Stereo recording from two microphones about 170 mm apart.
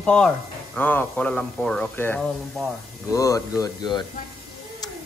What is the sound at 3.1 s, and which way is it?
Speech, 20° left (ahead or behind).